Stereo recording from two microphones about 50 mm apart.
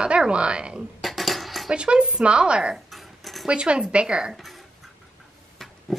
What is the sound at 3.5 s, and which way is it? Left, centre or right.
Speech, right.